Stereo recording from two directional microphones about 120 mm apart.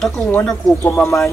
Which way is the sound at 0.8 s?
15° left (ahead or behind).